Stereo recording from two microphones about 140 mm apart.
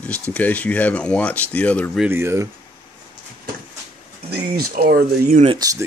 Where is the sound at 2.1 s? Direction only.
20° right (ahead or behind).